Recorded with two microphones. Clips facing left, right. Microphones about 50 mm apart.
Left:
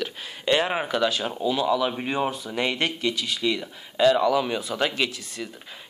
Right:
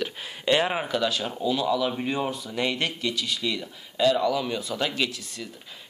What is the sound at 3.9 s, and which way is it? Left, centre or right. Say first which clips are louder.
Speech: left 3 dB; left.